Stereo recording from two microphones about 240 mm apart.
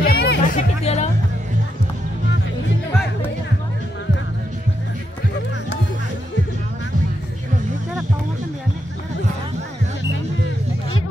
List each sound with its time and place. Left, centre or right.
0.0 s music: left